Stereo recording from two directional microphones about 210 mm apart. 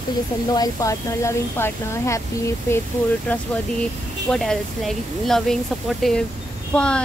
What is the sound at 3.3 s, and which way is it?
Speech, 5° left (ahead or behind).